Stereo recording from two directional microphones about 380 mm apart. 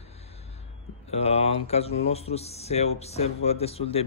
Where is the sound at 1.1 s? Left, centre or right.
Centre.